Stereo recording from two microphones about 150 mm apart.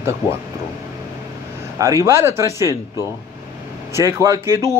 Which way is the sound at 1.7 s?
20° right (ahead or behind).